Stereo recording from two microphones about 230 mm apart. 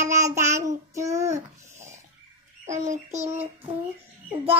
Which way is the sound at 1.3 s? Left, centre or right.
Right.